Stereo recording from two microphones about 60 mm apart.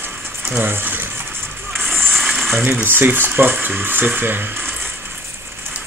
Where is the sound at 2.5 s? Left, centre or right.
Right.